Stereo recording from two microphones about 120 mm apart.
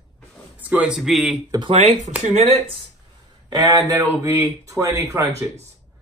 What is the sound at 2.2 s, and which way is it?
Speech, 60° right (ahead or behind).